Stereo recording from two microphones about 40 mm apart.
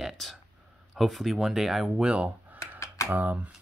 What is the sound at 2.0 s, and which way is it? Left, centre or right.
Speech, right.